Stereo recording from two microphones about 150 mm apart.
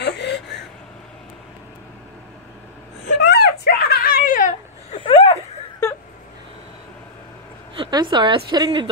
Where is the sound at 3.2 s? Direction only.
90° left; by 4.9 s 55° left (ahead or behind).